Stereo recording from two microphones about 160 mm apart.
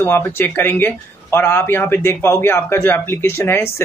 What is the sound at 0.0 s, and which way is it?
Speech, 15° left (ahead or behind).